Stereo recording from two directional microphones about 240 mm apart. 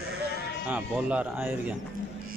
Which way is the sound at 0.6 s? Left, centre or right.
Centre.